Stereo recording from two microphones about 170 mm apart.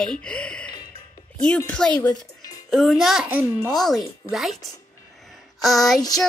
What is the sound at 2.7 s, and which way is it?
A child's voice, centre (ahead or behind).